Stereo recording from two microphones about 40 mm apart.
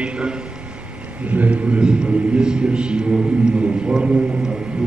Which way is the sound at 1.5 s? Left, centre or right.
Right.